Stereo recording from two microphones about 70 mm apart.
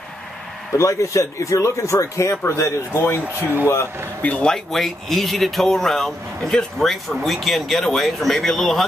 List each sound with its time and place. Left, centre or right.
0.7 s speech: left
4.2 s speech: centre
4.6 s speech: centre